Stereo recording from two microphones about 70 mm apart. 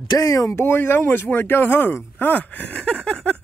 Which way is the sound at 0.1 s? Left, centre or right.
Left.